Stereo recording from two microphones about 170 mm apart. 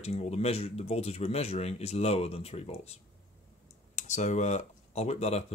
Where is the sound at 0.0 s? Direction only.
40° left (ahead or behind).